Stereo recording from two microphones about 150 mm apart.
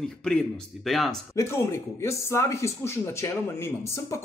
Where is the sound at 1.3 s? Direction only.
20° left (ahead or behind).